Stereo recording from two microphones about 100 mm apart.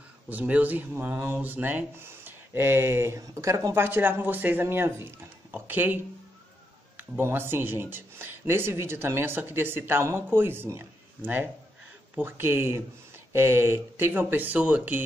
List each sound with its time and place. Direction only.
0.3 s speech: 15° right (ahead or behind)